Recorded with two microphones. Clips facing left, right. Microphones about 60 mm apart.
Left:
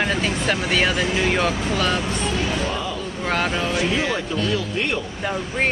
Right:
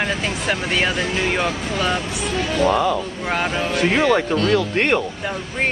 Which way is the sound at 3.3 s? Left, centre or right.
Centre.